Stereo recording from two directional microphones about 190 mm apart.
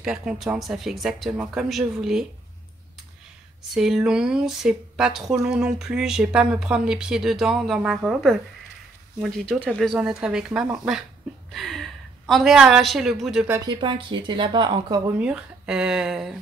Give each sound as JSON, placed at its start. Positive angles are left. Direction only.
{"t": 0.0, "sound": "speech", "side_deg": -5}
{"t": 3.7, "sound": "speech", "side_deg": 0}
{"t": 13.7, "sound": "speech", "side_deg": -25}
{"t": 15.1, "sound": "speech", "side_deg": -5}